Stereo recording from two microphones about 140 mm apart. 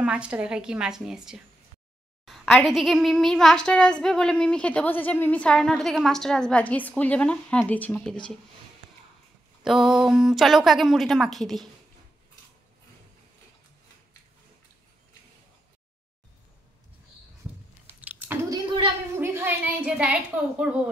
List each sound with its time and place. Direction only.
0.0 s a child's voice: 10° right (ahead or behind)
9.6 s a child's voice: 5° right (ahead or behind)
18.5 s a sound: 35° right (ahead or behind)
19.1 s a child's voice: 15° right (ahead or behind)